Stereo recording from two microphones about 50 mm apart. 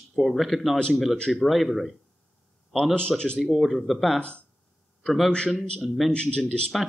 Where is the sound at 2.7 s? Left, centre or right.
Centre.